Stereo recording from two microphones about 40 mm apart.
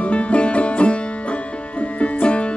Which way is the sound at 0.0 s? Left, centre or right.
Left.